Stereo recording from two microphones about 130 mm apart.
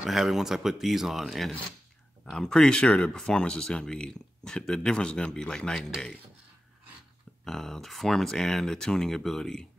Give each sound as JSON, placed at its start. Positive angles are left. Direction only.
{"t": 0.0, "sound": "speech", "side_deg": 0}
{"t": 7.4, "sound": "speech", "side_deg": 5}